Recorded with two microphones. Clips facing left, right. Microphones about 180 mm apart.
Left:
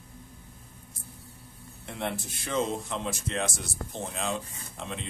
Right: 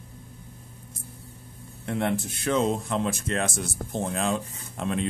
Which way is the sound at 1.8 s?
60° right (ahead or behind).